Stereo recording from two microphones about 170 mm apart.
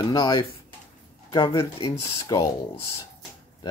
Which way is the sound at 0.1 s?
25° left (ahead or behind).